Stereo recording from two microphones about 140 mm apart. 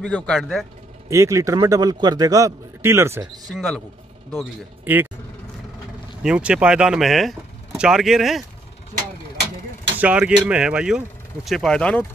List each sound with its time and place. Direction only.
0.0 s speech: 5° left (ahead or behind)
1.0 s a man's voice: 20° right (ahead or behind)
4.9 s speech: 10° right (ahead or behind)
6.2 s speech: 5° right (ahead or behind)
9.9 s speech: 10° right (ahead or behind); by 12.1 s 10° left (ahead or behind)